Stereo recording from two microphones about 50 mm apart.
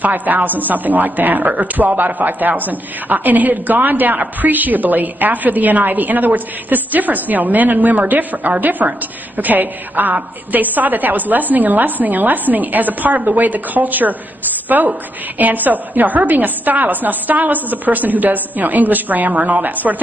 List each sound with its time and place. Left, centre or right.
0.0 s a woman's voice: right